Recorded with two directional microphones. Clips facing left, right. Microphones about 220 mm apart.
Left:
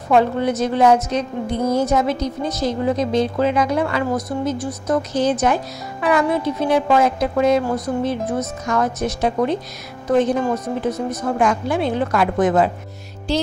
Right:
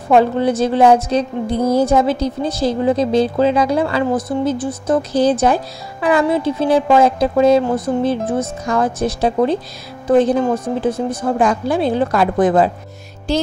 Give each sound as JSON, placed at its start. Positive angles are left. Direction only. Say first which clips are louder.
{"t": 0.1, "sound": "a woman's voice", "louder": "right 3 dB", "side_deg": -30}